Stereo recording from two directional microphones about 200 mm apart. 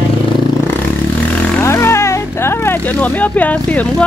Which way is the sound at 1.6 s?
15° left (ahead or behind).